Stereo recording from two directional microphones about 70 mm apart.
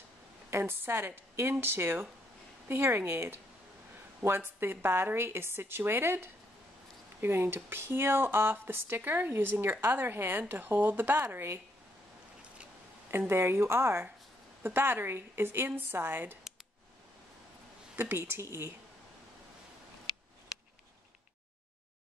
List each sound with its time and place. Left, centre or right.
0.5 s speech: right
13.3 s speech: right
17.9 s speech: right